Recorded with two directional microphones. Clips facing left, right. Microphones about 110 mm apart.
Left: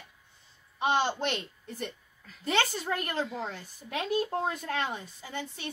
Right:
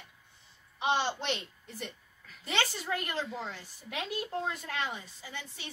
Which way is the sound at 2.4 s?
45° left (ahead or behind).